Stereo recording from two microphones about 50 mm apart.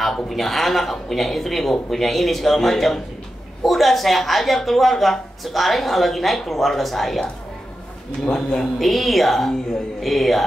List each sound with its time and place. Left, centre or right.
0.0 s a woman's voice: centre
8.3 s speech: centre
8.7 s a woman's voice: centre